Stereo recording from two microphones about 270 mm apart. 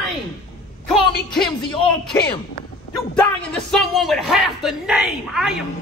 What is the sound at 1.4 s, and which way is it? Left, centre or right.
Speech, centre.